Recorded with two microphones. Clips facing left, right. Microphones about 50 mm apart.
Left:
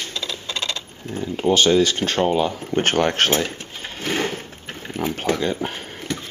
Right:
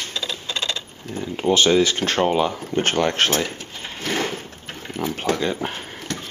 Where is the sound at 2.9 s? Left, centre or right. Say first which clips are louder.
Left 1 dB; centre.